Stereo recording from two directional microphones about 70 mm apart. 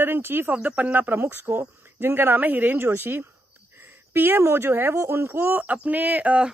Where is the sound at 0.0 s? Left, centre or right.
Right.